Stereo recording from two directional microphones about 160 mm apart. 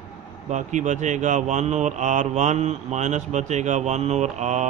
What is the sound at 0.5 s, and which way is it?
Speech, 50° right (ahead or behind).